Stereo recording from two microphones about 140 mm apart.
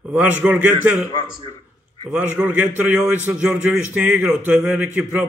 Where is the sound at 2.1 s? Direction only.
10° right (ahead or behind).